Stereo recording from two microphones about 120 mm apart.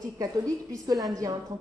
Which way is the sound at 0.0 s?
30° right (ahead or behind).